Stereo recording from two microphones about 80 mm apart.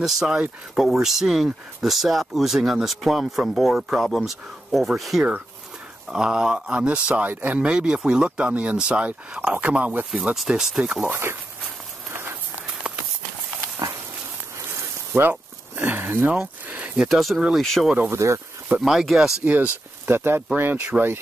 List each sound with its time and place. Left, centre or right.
0.0 s speech: centre
10.3 s speech: centre
11.1 s speech: right
12.1 s a sound: right
15.1 s a sound: right
17.0 s speech: centre
18.1 s speech: right
18.8 s speech: centre
19.4 s speech: centre
20.1 s speech: right